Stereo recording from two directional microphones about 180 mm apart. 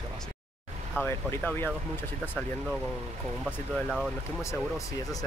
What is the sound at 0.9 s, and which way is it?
Speech, 10° left (ahead or behind).